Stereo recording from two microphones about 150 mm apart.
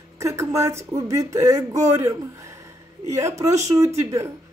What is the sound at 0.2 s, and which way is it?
A man's voice, 20° right (ahead or behind).